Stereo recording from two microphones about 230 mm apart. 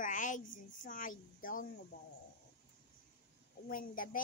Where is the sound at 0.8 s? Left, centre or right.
Left.